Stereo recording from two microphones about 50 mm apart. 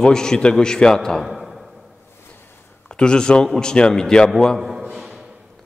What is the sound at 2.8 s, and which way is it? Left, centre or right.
A man's voice, centre.